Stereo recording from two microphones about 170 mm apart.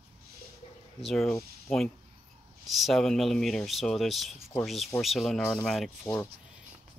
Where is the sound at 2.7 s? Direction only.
Centre (ahead or behind).